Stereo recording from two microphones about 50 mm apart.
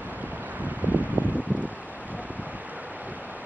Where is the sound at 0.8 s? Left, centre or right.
Right.